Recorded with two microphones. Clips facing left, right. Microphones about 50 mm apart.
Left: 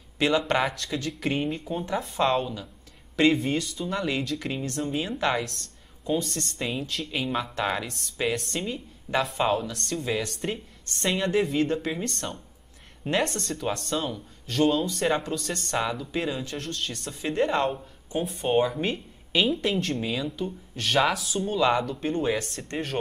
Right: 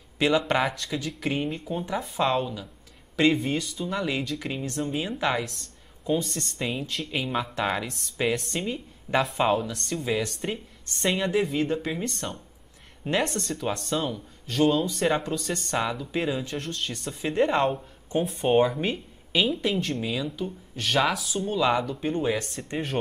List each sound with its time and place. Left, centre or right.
0.2 s speech: centre
6.1 s speech: centre
6.6 s speech: centre
15.7 s speech: centre
17.7 s speech: centre